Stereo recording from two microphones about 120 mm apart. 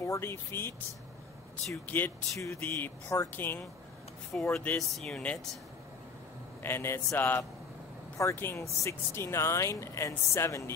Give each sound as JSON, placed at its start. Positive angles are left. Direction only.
{"t": 0.0, "sound": "speech", "side_deg": 20}
{"t": 1.9, "sound": "speech", "side_deg": 15}
{"t": 4.3, "sound": "speech", "side_deg": 5}
{"t": 6.6, "sound": "speech", "side_deg": 20}